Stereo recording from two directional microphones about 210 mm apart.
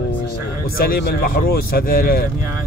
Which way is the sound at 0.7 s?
45° left (ahead or behind).